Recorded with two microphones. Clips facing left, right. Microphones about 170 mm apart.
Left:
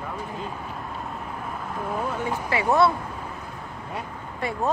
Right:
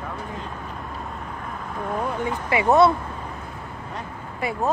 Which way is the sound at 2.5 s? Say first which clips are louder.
Right 4 dB; 20° right (ahead or behind).